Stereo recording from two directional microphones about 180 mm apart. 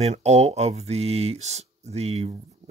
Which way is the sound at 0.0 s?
35° right (ahead or behind).